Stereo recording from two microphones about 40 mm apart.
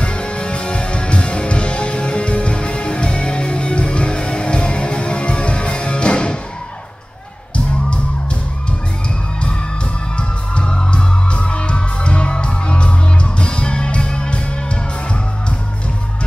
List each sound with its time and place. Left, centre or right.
0.0 s music: left
10.1 s music: left